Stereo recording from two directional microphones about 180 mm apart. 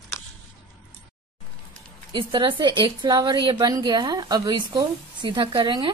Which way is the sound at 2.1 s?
25° right (ahead or behind).